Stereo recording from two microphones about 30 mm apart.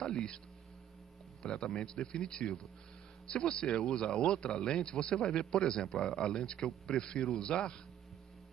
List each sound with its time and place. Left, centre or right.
0.0 s a man's voice: left
1.4 s a man's voice: left